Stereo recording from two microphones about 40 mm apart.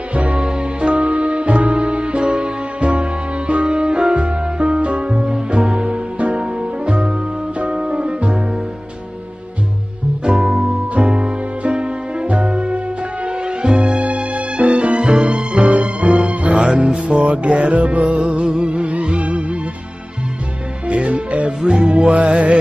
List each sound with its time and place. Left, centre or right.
0.1 s music: right
10.2 s music: right
20.8 s music: right
21.9 s music: right